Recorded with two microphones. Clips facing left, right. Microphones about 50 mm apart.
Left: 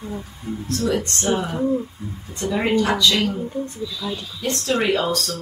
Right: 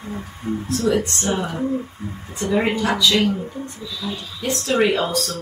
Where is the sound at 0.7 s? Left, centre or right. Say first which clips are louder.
Right 2 dB; centre.